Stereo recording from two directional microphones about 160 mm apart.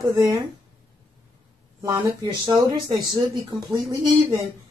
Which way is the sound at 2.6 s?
20° right (ahead or behind).